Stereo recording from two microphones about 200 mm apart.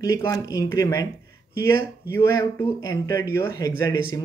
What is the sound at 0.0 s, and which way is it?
Speech, 15° left (ahead or behind).